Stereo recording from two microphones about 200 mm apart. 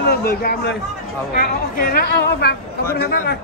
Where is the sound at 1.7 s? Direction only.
50° left (ahead or behind).